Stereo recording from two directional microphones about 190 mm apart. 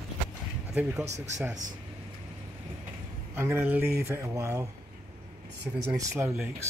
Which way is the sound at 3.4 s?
10° right (ahead or behind).